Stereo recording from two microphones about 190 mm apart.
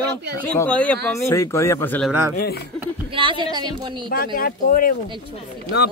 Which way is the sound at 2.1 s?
10° right (ahead or behind).